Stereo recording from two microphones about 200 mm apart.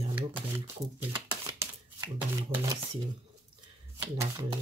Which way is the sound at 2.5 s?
25° right (ahead or behind).